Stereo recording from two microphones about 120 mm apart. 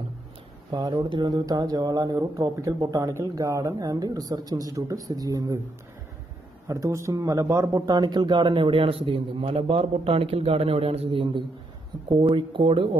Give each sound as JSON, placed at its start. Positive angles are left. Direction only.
{"t": 0.7, "sound": "speech", "side_deg": -35}
{"t": 6.7, "sound": "a man's voice", "side_deg": -25}